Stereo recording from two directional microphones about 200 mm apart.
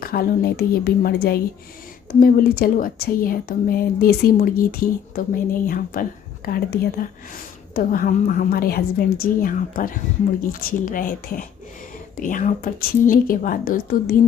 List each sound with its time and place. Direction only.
0.0 s speech: 50° left (ahead or behind)